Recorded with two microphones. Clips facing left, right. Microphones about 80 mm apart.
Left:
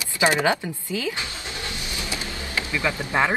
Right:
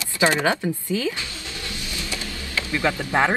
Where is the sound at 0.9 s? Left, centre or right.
Right.